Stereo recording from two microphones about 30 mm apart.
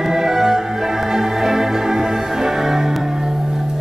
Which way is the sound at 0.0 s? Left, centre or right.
Centre.